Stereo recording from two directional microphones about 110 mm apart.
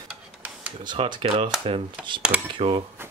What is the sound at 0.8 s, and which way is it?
Speech, 50° right (ahead or behind).